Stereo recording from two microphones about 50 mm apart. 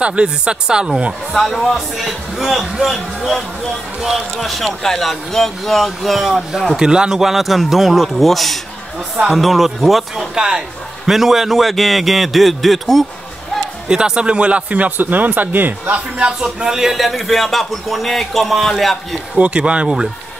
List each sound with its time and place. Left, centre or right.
0.0 s speech: right
1.3 s a man's voice: centre
6.8 s a man's voice: centre
10.1 s a man's voice: centre
13.8 s speech: centre; by 16.0 s right
16.3 s a man's voice: centre
19.3 s speech: right